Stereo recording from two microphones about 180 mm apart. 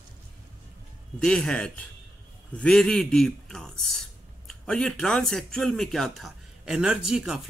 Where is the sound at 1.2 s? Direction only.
5° left (ahead or behind).